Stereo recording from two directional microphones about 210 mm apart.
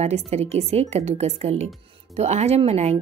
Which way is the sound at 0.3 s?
30° right (ahead or behind).